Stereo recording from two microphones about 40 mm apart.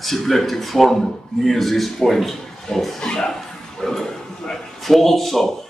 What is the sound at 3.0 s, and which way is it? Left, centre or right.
Speech, centre.